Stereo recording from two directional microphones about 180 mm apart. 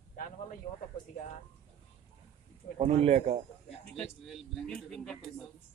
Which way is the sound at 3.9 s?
Centre (ahead or behind).